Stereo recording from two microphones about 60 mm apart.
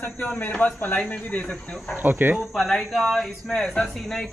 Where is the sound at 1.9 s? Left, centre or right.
Right.